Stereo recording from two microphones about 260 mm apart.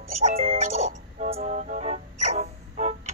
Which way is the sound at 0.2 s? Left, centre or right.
Right.